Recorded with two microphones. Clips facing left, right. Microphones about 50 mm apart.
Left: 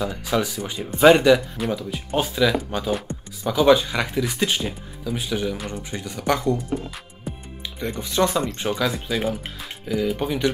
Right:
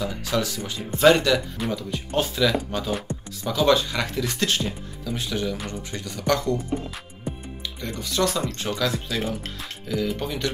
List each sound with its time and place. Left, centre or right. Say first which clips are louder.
0.0 s speech: left 2 dB; centre
7.8 s speech: left 3 dB; centre